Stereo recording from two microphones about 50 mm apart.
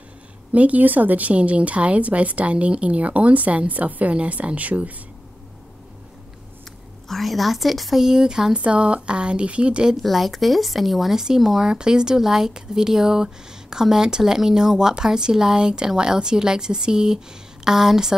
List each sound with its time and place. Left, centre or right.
0.5 s a woman's voice: right
7.1 s speech: centre
8.5 s a woman's voice: right
10.0 s speech: centre